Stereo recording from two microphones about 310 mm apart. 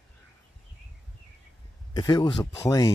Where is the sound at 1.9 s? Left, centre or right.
Centre.